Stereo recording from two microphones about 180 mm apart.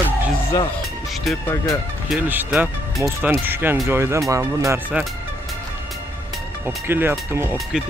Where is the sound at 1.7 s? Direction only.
5° right (ahead or behind).